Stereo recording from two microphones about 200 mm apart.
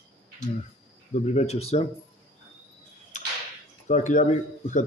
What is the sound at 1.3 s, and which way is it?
Speech, 35° left (ahead or behind).